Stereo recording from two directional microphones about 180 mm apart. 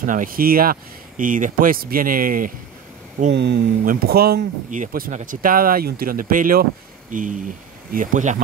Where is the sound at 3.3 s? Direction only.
65° right (ahead or behind).